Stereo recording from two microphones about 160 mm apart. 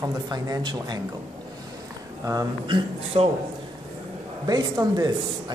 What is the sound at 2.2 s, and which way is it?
A man's voice, 25° right (ahead or behind).